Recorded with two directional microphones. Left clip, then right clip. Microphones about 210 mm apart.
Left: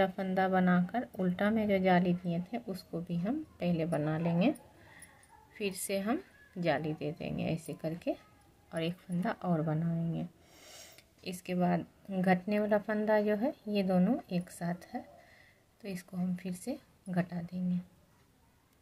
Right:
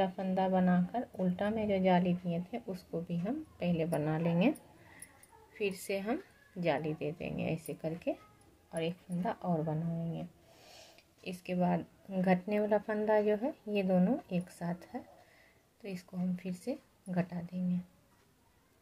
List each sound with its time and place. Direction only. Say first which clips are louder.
0.0 s speech: left 2 dB; 20° left (ahead or behind)